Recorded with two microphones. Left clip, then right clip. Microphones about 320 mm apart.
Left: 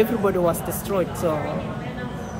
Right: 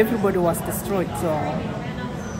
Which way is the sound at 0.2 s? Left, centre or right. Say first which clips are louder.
Even; centre.